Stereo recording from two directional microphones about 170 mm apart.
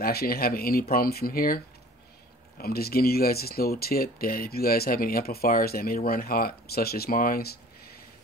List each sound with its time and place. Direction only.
0.0 s speech: 65° left (ahead or behind)